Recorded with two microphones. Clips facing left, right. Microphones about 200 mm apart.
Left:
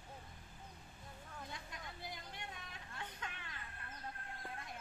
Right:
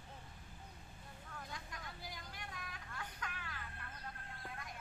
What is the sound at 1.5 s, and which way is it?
Vehicle, 20° left (ahead or behind).